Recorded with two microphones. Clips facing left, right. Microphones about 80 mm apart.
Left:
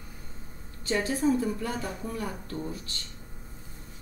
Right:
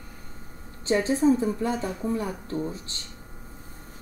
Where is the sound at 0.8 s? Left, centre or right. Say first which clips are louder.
Right 5 dB; right.